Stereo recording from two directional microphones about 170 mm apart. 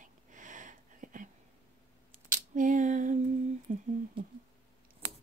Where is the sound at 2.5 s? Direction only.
50° right (ahead or behind).